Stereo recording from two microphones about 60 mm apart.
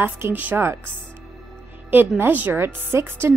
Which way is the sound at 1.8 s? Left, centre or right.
Right.